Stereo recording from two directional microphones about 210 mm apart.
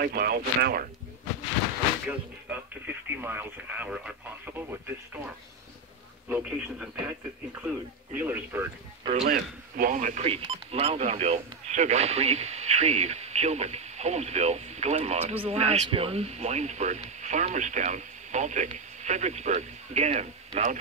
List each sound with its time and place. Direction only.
0.0 s speech: 45° right (ahead or behind)
2.0 s speech: 5° right (ahead or behind)
9.2 s speech: 45° right (ahead or behind)